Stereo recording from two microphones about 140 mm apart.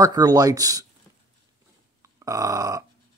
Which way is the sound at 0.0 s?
25° right (ahead or behind).